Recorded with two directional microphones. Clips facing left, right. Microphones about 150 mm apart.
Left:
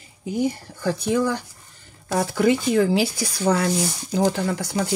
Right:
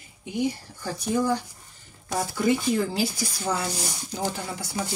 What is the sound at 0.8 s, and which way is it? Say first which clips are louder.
Speech: left 4 dB; 75° left (ahead or behind).